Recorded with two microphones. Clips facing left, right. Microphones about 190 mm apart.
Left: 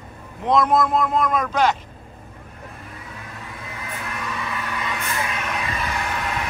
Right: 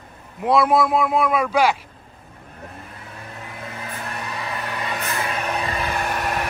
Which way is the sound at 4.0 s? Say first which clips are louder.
Left 1 dB; 35° right (ahead or behind).